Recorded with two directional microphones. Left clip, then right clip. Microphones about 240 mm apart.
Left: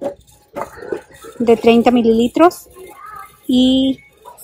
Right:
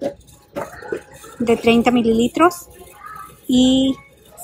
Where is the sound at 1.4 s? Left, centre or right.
Left.